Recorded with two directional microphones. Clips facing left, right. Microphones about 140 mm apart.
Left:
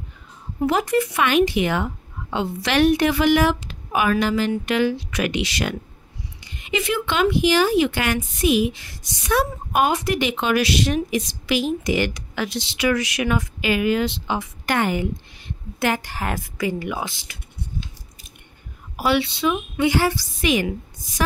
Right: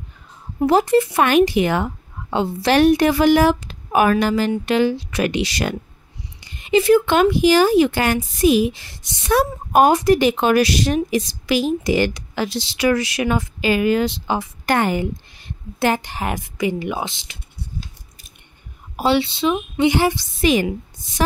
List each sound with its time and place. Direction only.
0.6 s speech: 30° right (ahead or behind)
1.2 s a woman's voice: 40° right (ahead or behind)
4.5 s a woman's voice: 30° right (ahead or behind)
9.3 s a woman's voice: 40° right (ahead or behind)
16.1 s speech: 20° right (ahead or behind)
18.9 s a woman's voice: 30° right (ahead or behind)